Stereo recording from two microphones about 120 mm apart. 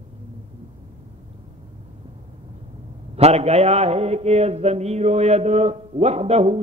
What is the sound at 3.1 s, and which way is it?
Mantra, 60° right (ahead or behind).